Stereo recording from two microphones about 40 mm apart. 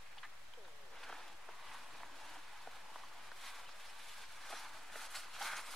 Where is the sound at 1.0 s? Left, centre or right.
Centre.